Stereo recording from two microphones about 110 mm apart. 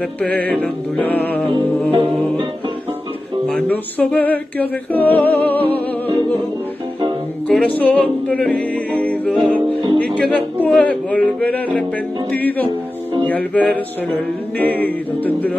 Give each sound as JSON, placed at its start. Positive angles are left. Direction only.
{"t": 0.2, "sound": "music", "side_deg": 10}
{"t": 1.9, "sound": "music", "side_deg": -50}
{"t": 3.6, "sound": "music", "side_deg": 15}
{"t": 7.4, "sound": "music", "side_deg": 10}